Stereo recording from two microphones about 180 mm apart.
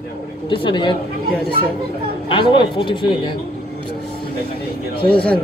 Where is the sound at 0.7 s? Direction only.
25° left (ahead or behind).